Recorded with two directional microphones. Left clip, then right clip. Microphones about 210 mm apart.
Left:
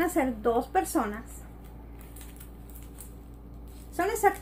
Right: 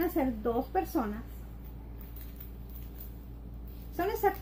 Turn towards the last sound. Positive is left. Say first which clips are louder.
# left 4 dB
turn(degrees=10)  # may be behind; listen again after turning